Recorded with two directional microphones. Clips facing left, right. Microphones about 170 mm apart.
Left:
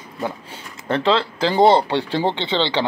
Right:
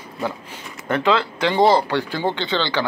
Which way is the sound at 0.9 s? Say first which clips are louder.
Even; 30° left (ahead or behind).